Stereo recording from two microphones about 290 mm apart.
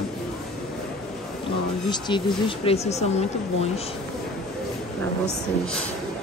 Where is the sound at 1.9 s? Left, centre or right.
Centre.